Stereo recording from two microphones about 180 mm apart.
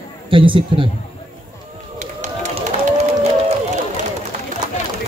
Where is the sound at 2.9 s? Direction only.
40° right (ahead or behind).